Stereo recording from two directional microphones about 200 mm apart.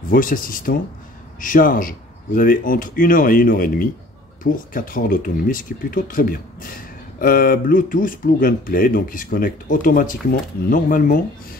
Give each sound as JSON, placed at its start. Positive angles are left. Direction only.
{"t": 0.1, "sound": "speech", "side_deg": 45}